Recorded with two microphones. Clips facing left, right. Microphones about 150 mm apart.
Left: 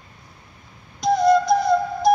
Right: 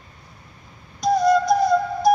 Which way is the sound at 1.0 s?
10° right (ahead or behind).